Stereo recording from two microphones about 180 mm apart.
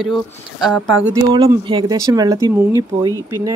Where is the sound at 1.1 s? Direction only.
20° right (ahead or behind).